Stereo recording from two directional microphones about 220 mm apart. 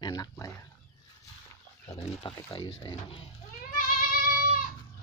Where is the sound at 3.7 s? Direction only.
40° left (ahead or behind).